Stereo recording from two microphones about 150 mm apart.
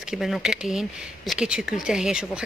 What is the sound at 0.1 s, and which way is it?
Speech, centre (ahead or behind).